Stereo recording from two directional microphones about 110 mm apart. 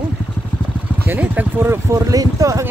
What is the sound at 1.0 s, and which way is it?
Speech, 20° right (ahead or behind).